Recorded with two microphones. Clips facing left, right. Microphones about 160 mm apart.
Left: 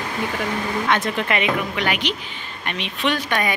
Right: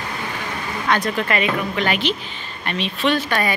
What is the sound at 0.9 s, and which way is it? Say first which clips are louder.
A woman's voice: right 3 dB; 20° left (ahead or behind).